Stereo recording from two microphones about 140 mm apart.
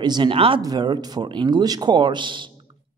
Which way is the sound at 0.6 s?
30° right (ahead or behind).